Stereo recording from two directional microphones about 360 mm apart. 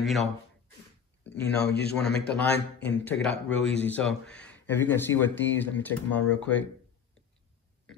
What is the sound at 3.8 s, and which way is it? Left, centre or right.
Speech, centre.